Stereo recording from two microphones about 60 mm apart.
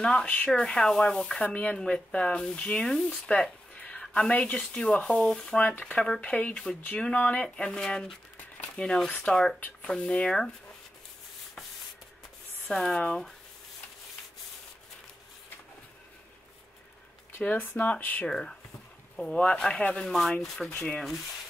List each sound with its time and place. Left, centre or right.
0.0 s speech: centre
3.7 s a sound: left
4.1 s speech: centre
9.6 s speech: left
12.6 s speech: centre
17.7 s speech: left
18.2 s speech: centre